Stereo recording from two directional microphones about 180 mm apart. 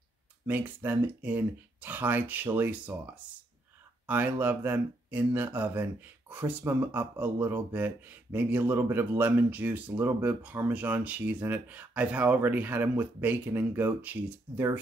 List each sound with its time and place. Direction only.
0.5 s speech: 10° right (ahead or behind)
4.4 s speech: 10° right (ahead or behind)